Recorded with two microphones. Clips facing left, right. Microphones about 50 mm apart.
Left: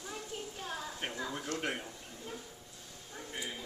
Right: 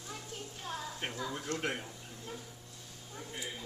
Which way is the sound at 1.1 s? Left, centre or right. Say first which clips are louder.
Even; centre.